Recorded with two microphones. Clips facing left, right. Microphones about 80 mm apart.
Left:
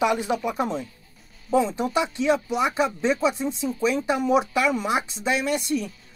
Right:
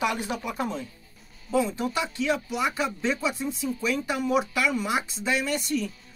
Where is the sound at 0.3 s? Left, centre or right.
Left.